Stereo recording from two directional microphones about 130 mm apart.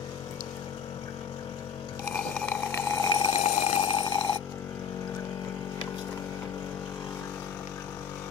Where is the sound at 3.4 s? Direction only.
55° left (ahead or behind); by 4.1 s 40° left (ahead or behind).